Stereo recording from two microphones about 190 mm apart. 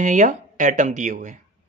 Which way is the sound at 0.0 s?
40° right (ahead or behind).